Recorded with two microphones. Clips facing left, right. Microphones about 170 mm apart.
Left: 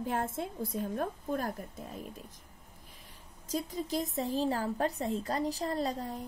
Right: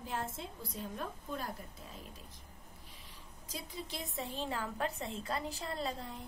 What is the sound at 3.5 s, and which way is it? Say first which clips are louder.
A woman's voice: left 11 dB; 45° left (ahead or behind).